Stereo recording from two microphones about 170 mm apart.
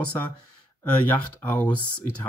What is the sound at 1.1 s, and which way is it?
Speech, 10° left (ahead or behind).